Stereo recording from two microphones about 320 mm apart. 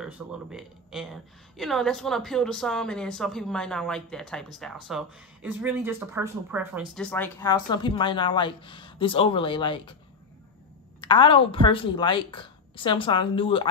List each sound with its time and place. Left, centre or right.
0.0 s a woman's voice: centre
11.0 s speech: centre